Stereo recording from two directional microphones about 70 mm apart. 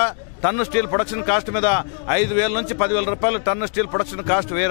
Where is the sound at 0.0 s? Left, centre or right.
Centre.